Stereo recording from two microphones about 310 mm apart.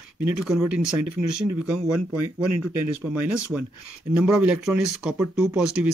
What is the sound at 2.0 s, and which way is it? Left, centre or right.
Speech, right.